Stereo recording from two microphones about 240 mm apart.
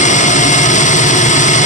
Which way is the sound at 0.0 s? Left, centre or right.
Left.